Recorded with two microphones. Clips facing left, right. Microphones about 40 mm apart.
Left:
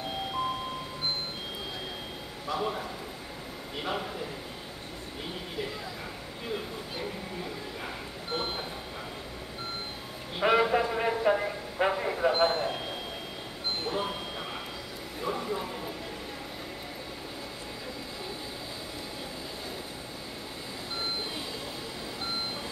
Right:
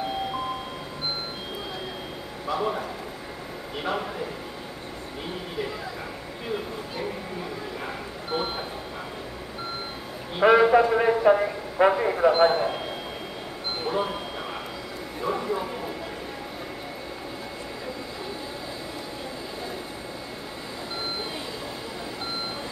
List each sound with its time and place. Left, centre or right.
2.4 s a man's voice: centre
3.8 s a man's voice: centre
8.3 s a man's voice: centre
10.4 s a man's voice: centre
15.2 s a sound: centre